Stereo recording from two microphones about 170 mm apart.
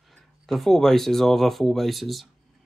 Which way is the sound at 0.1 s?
Centre (ahead or behind).